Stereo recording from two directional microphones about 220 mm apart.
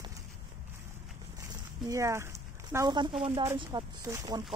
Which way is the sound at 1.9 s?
15° right (ahead or behind).